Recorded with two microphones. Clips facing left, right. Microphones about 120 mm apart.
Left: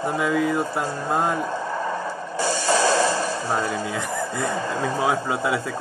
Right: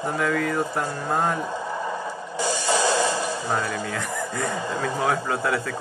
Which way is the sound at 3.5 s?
15° left (ahead or behind).